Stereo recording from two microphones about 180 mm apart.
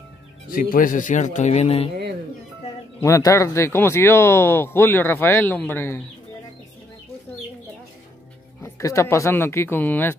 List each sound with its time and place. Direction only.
0.5 s speech: 50° left (ahead or behind); by 1.9 s 35° left (ahead or behind)
3.0 s speech: 20° left (ahead or behind)
8.6 s speech: 15° left (ahead or behind)